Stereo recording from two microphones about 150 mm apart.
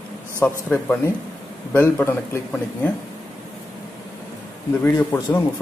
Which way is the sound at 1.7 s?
15° left (ahead or behind).